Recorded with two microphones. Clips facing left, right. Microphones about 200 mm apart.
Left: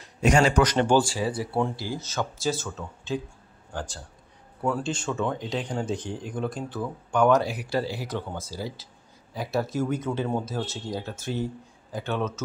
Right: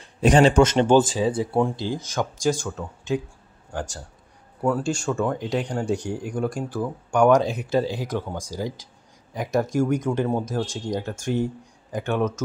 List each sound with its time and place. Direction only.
0.0 s speech: 30° right (ahead or behind); by 3.2 s 15° right (ahead or behind)
4.6 s speech: 5° right (ahead or behind)